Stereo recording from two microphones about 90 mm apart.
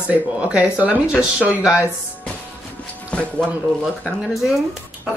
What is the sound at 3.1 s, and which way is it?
Speech, 15° left (ahead or behind).